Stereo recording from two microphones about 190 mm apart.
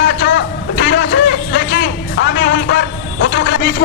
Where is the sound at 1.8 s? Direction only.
65° left (ahead or behind).